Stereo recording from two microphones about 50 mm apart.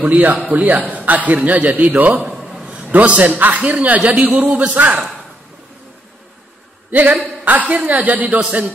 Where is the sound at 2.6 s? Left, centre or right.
Centre.